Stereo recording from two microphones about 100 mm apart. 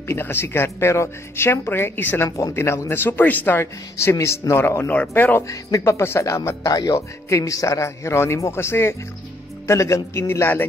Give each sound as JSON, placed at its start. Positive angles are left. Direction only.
{"t": 0.1, "sound": "speech", "side_deg": 25}
{"t": 5.5, "sound": "speech", "side_deg": 30}